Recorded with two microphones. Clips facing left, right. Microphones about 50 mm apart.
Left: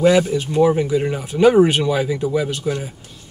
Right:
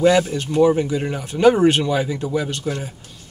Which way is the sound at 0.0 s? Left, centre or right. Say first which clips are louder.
Left 1 dB; centre.